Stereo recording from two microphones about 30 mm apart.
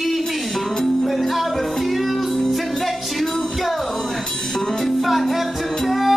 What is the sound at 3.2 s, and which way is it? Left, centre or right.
Music, centre.